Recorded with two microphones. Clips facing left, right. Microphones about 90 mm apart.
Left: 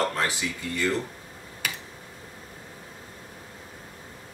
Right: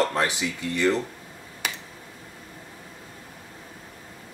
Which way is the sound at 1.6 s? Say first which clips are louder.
Right 1 dB; 25° right (ahead or behind).